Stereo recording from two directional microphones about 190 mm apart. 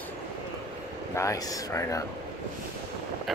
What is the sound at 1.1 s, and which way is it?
Speech, 15° left (ahead or behind).